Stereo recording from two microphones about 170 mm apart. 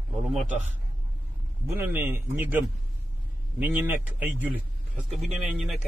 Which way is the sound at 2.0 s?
10° right (ahead or behind).